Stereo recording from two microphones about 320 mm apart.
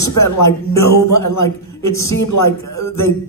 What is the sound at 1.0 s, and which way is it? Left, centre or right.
Speech, left.